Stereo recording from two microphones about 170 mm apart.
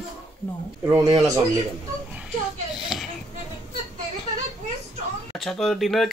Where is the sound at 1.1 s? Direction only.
20° right (ahead or behind).